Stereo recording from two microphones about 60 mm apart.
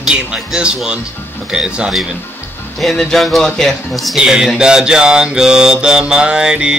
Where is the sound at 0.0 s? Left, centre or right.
Centre.